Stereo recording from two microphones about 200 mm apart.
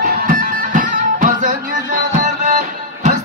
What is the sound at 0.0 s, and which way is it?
Music, 45° right (ahead or behind).